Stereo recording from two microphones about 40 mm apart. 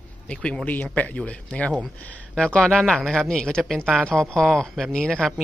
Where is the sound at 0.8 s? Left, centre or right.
Left.